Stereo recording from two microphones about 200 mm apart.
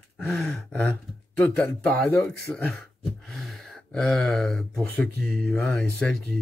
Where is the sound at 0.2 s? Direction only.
Centre (ahead or behind).